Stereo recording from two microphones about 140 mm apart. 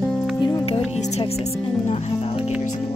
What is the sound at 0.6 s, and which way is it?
Speech, 45° left (ahead or behind).